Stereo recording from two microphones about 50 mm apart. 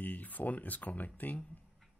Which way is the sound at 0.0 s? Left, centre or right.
Left.